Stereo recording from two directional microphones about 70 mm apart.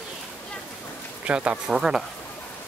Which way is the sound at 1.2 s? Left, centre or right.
Centre.